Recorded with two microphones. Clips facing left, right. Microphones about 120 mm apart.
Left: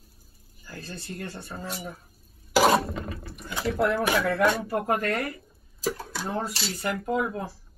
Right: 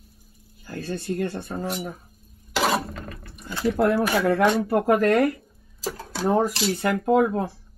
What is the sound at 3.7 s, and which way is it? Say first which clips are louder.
Speech: right 4 dB; 15° right (ahead or behind).